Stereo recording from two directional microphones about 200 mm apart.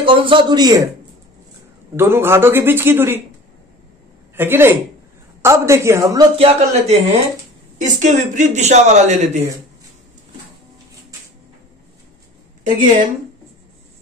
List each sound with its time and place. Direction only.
0.0 s a man's voice: 25° right (ahead or behind)
2.0 s a man's voice: 10° right (ahead or behind)
4.4 s a man's voice: 10° right (ahead or behind); by 9.4 s 35° right (ahead or behind)